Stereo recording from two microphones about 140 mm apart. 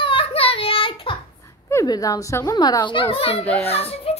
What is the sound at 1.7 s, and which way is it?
Speech, 25° left (ahead or behind).